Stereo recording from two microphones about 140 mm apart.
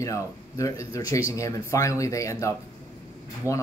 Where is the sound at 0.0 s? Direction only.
20° left (ahead or behind).